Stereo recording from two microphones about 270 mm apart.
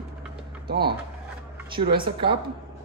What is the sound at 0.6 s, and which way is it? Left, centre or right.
Speech, right.